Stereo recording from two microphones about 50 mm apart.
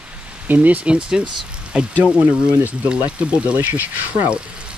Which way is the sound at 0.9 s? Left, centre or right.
Centre.